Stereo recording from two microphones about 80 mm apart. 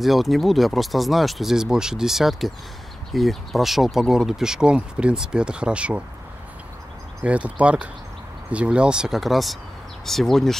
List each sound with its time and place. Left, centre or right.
0.0 s speech: centre
7.2 s speech: centre